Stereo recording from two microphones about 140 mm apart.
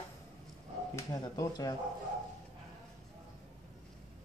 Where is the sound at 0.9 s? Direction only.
25° left (ahead or behind).